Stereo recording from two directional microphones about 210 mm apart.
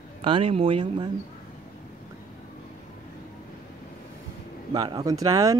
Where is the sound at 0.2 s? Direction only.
25° right (ahead or behind).